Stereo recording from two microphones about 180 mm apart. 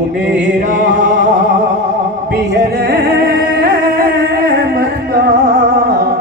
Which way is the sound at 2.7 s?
55° right (ahead or behind).